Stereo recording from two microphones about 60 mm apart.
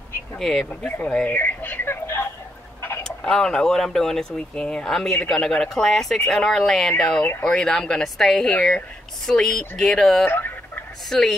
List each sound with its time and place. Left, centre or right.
0.4 s speech: centre
1.0 s speech: centre
1.3 s a sound: left
3.3 s speech: centre
10.2 s speech: left
11.1 s speech: centre